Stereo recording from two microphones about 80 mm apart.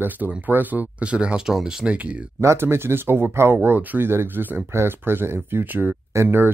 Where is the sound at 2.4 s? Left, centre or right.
Right.